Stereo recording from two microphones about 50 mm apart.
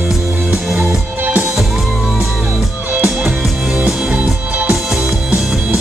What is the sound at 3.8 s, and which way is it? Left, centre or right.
Music, centre.